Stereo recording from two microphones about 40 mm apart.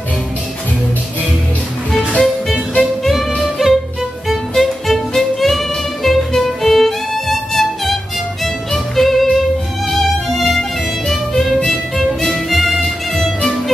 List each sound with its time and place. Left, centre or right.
2.1 s music: centre
3.0 s music: centre
12.3 s music: centre